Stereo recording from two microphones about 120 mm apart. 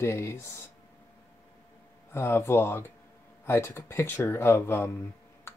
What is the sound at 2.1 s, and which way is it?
Speech, 20° left (ahead or behind).